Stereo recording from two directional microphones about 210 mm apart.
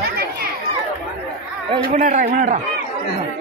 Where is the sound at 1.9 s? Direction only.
40° right (ahead or behind).